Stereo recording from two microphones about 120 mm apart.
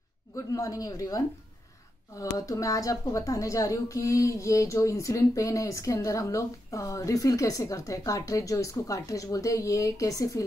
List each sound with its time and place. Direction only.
0.5 s a woman's voice: 30° left (ahead or behind)